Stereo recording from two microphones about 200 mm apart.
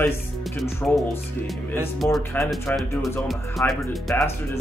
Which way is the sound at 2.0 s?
10° left (ahead or behind).